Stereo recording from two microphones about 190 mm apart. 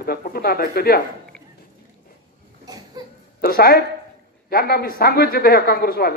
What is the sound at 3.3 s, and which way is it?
Speech, 50° left (ahead or behind).